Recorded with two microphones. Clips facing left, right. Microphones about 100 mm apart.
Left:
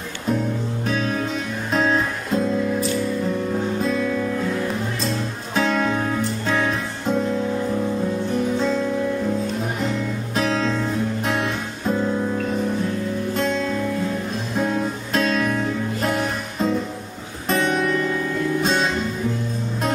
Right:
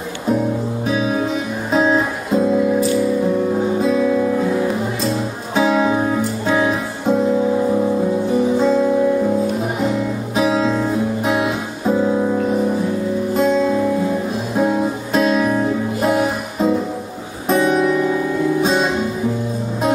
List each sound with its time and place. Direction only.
0.3 s music: 5° right (ahead or behind)
7.5 s music: 20° right (ahead or behind)
8.3 s music: 5° right (ahead or behind)